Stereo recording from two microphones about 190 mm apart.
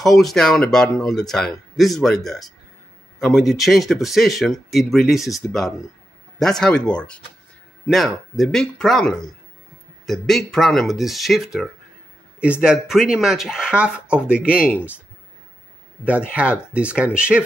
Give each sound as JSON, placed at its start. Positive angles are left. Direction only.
{"t": 0.0, "sound": "speech", "side_deg": 0}
{"t": 16.3, "sound": "speech", "side_deg": -5}